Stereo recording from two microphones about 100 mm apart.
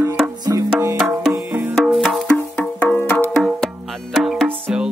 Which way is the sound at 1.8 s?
Centre (ahead or behind).